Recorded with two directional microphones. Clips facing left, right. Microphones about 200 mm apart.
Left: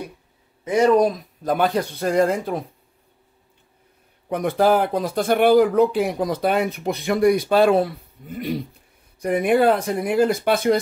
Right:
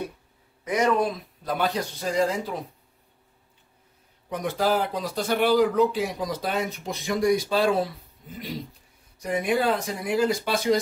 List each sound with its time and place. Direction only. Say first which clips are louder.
0.7 s speech: left 7 dB; 30° left (ahead or behind); by 2.7 s 55° left (ahead or behind)
4.3 s speech: left 6 dB; 55° left (ahead or behind)